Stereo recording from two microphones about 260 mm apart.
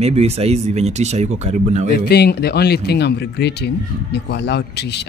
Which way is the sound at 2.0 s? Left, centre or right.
Left.